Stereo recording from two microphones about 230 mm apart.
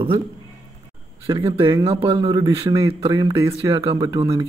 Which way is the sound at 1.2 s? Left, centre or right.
Centre.